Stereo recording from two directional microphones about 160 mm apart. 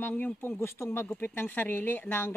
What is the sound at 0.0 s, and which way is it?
Speech, 10° left (ahead or behind).